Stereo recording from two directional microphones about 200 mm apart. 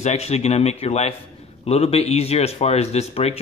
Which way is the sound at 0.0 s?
35° left (ahead or behind).